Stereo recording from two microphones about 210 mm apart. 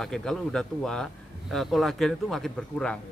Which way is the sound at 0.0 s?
5° left (ahead or behind).